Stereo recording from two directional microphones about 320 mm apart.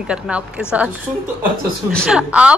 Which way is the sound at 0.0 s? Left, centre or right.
Centre.